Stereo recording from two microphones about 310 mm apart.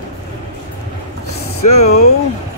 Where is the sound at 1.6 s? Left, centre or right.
Left.